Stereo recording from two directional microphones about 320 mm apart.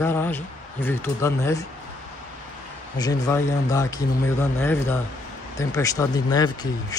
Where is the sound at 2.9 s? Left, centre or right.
Centre.